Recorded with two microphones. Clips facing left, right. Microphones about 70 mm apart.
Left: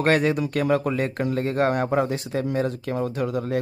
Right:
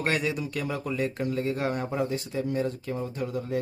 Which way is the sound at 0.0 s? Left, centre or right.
Left.